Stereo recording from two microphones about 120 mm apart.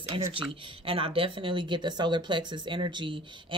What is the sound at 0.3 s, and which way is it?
Speech, 50° right (ahead or behind).